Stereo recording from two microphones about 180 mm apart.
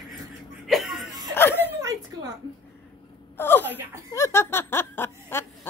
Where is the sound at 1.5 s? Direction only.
15° right (ahead or behind).